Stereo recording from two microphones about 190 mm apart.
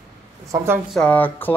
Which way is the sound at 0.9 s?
5° left (ahead or behind).